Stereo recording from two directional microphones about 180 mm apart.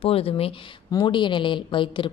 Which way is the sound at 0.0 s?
30° left (ahead or behind).